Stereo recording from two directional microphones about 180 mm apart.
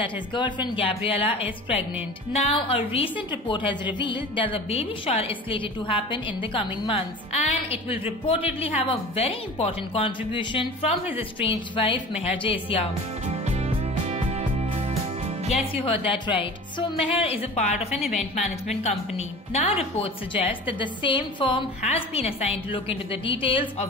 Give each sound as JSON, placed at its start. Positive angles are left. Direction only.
{"t": 0.0, "sound": "a woman's voice", "side_deg": 25}
{"t": 13.3, "sound": "music", "side_deg": -35}
{"t": 15.7, "sound": "a woman's voice", "side_deg": 30}